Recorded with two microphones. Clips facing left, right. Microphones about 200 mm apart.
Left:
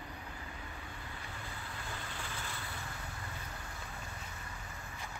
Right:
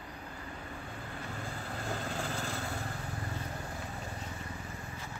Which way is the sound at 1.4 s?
45° right (ahead or behind).